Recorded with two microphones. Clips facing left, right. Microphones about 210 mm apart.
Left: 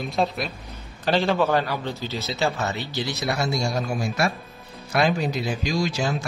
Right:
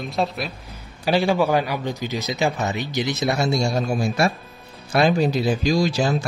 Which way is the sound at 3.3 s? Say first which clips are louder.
Right 3 dB; 25° right (ahead or behind).